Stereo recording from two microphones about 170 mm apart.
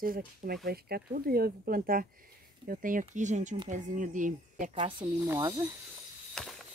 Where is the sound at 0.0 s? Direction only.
55° right (ahead or behind).